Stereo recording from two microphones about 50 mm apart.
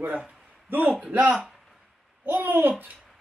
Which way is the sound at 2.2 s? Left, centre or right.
Right.